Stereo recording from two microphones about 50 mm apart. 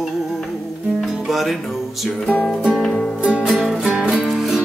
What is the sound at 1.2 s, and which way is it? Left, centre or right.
Music, centre.